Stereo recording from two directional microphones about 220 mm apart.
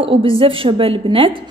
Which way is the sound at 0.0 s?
25° right (ahead or behind).